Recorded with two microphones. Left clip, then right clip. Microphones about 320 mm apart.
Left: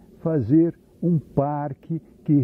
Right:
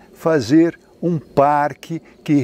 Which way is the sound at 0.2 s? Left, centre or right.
Centre.